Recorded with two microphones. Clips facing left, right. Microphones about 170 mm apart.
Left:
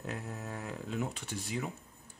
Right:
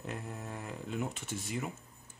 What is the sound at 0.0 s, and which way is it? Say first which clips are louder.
Speech: left 1 dB; centre (ahead or behind).